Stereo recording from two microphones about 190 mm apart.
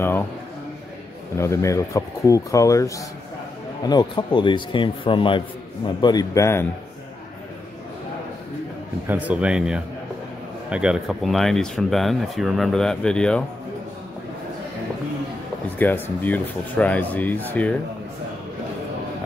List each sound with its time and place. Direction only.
1.3 s a man's voice: 15° left (ahead or behind)
9.0 s speech: 10° right (ahead or behind)
15.8 s speech: 10° left (ahead or behind)